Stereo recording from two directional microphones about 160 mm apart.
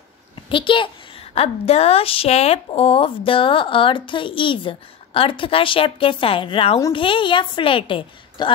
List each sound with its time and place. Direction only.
0.5 s a child's voice: 30° left (ahead or behind)